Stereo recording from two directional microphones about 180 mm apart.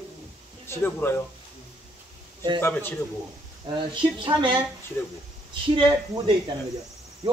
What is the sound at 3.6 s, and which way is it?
Speech, 25° right (ahead or behind).